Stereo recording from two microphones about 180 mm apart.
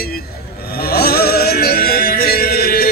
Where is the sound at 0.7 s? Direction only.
60° left (ahead or behind).